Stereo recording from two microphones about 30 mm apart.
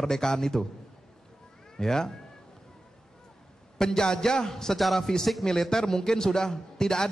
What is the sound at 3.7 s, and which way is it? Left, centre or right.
A man's voice, left.